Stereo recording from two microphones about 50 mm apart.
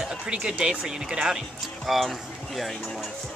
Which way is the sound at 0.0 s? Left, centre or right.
Centre.